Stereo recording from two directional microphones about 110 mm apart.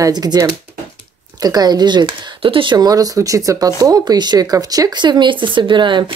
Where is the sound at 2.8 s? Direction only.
35° right (ahead or behind).